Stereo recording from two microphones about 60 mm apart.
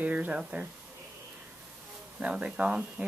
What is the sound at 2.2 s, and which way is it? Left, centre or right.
Speech, right.